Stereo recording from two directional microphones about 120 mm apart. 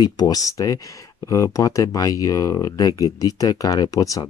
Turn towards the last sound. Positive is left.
turn(degrees=30)  # may be behind; listen again after turning